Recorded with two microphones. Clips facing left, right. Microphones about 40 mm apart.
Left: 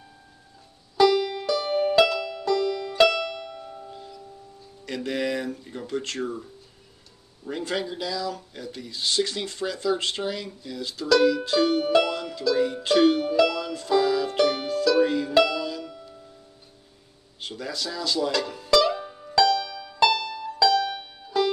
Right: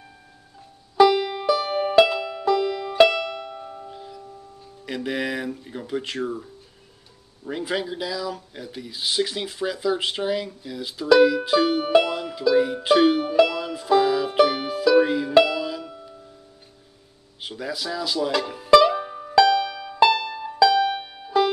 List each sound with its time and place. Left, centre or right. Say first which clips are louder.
0.9 s music: right 3 dB; centre
4.8 s speech: right 1 dB; centre
17.4 s music: right 2 dB; centre